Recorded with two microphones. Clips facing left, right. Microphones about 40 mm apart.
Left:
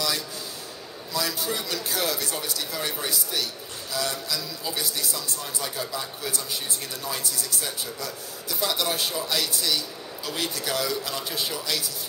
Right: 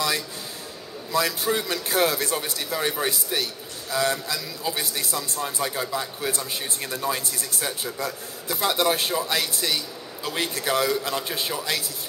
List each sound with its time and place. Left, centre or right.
1.1 s a man's voice: right